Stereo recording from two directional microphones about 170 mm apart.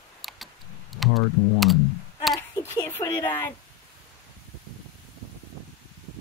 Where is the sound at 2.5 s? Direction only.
15° left (ahead or behind).